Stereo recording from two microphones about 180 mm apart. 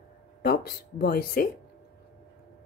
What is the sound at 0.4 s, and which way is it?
Speech, 60° left (ahead or behind).